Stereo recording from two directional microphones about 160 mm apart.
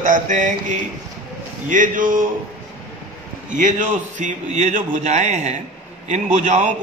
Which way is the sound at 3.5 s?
50° right (ahead or behind).